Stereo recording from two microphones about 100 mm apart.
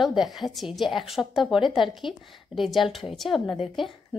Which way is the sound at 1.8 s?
60° left (ahead or behind).